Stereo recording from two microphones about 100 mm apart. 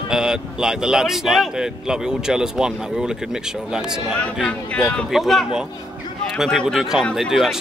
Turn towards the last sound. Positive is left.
turn(degrees=0)  # may be behind; listen again after turning